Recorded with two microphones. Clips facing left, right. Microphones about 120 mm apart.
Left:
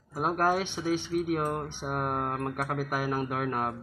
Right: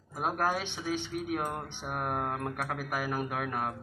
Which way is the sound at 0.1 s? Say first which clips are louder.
Left 4 dB; 5° left (ahead or behind).